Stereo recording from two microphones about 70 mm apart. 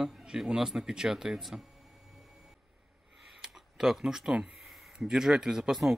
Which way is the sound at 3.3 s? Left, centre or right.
Centre.